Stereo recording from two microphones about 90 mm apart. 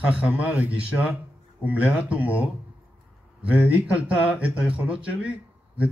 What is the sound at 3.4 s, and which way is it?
Speech, 15° right (ahead or behind).